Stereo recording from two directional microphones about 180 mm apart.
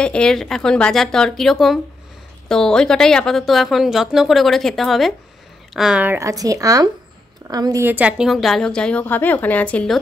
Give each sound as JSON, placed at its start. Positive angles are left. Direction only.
{"t": 0.0, "sound": "a woman's voice", "side_deg": 5}